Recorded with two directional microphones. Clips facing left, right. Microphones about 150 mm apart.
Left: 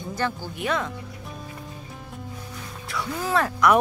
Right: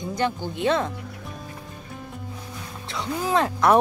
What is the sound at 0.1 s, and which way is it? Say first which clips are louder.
Speech: right 2 dB; 20° right (ahead or behind).